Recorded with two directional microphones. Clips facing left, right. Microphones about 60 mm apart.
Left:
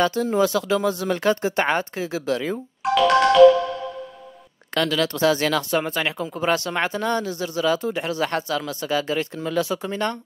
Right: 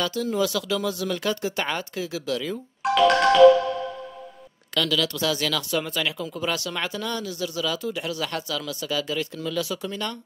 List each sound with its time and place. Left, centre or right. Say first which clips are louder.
0.0 s speech: left 5 dB; left
2.8 s music: left 2 dB; centre
4.7 s speech: left 3 dB; left